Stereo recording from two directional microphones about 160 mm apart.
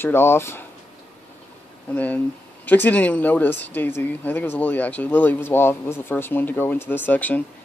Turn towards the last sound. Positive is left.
turn(degrees=10)  # may be behind; listen again after turning